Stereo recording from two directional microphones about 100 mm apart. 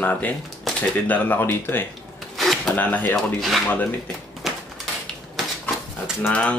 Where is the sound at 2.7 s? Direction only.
15° left (ahead or behind).